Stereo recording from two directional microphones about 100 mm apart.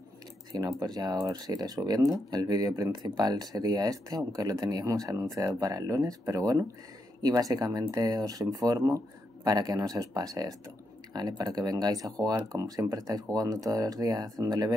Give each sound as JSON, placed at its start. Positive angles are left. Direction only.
{"t": 0.5, "sound": "speech", "side_deg": -35}